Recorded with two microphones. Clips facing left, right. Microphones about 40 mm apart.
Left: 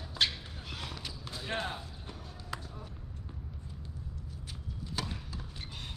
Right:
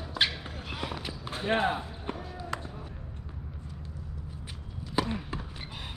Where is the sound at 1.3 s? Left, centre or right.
Right.